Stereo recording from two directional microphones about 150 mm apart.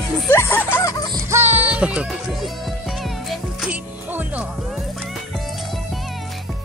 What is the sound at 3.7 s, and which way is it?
Music, 10° right (ahead or behind).